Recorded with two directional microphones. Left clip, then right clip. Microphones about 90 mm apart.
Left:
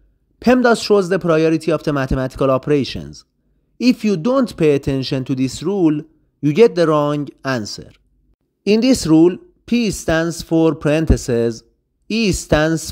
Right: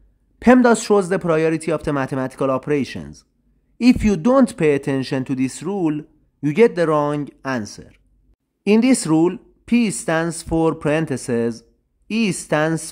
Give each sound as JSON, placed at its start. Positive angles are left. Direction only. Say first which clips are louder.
{"t": 0.4, "sound": "speech", "louder": "even", "side_deg": 20}
{"t": 4.0, "sound": "speech", "louder": "right 1 dB", "side_deg": 5}
{"t": 4.6, "sound": "speech", "louder": "left 2 dB", "side_deg": 25}
{"t": 8.6, "sound": "speech", "louder": "left 2 dB", "side_deg": 25}
{"t": 10.9, "sound": "speech", "louder": "left 3 dB", "side_deg": 35}